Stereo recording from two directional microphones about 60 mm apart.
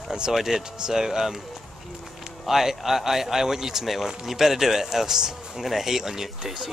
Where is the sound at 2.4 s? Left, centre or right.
Centre.